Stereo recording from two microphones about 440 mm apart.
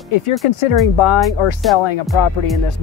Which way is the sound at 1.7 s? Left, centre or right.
Left.